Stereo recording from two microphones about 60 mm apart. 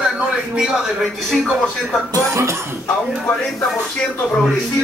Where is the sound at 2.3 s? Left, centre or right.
Right.